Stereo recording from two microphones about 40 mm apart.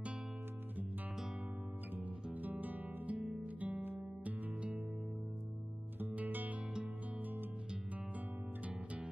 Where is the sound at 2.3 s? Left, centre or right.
Right.